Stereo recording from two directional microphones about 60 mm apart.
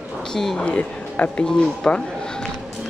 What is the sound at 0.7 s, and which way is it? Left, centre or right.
Speech, left.